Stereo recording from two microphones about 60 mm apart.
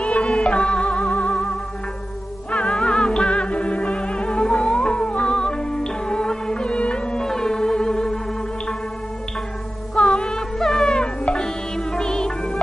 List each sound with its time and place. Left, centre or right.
0.0 s music: centre
9.9 s music: centre